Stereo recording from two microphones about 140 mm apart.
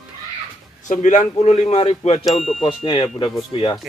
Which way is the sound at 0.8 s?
60° left (ahead or behind).